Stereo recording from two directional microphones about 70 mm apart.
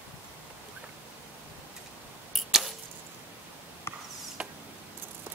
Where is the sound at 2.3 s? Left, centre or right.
Centre.